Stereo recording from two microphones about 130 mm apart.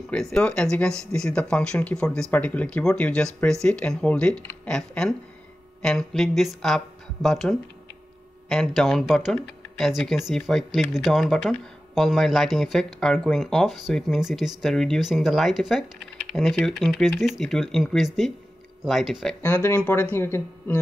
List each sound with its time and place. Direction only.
0.1 s speech: 5° left (ahead or behind)
19.4 s speech: 15° left (ahead or behind)